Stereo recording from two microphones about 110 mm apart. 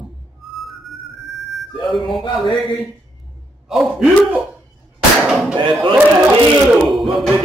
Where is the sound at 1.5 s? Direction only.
Centre (ahead or behind).